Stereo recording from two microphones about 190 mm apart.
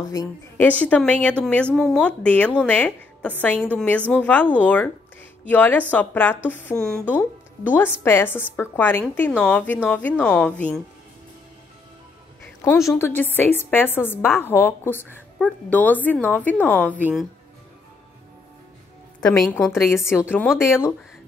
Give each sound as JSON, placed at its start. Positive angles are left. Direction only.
{"t": 0.1, "sound": "a woman's voice", "side_deg": 20}
{"t": 0.7, "sound": "a woman's voice", "side_deg": 5}
{"t": 12.6, "sound": "a woman's voice", "side_deg": 15}
{"t": 19.2, "sound": "a woman's voice", "side_deg": 5}
{"t": 20.2, "sound": "a woman's voice", "side_deg": 10}